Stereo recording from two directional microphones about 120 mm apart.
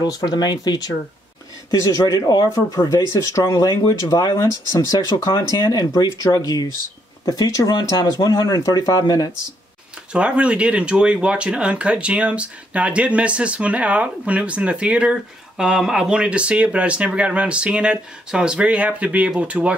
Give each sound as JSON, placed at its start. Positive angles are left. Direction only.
{"t": 0.0, "sound": "speech", "side_deg": 35}
{"t": 2.0, "sound": "speech", "side_deg": 30}
{"t": 10.1, "sound": "speech", "side_deg": -10}